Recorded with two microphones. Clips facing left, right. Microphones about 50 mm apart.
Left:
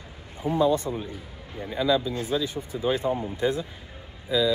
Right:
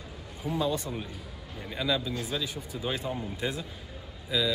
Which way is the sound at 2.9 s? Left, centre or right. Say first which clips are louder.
Left 8 dB; left.